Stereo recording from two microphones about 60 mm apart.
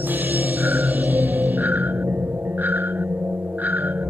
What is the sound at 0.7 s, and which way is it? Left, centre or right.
Music, right.